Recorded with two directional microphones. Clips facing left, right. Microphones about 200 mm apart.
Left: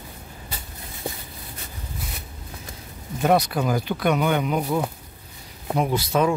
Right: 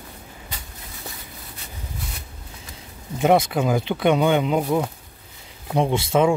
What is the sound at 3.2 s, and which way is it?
Speech, 20° right (ahead or behind).